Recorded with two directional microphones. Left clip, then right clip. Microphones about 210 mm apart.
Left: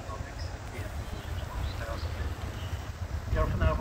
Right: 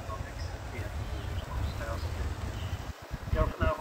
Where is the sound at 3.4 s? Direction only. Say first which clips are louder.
Even; 15° left (ahead or behind).